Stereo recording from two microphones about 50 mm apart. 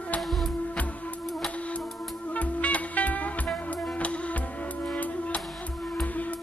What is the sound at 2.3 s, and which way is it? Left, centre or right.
Music, left.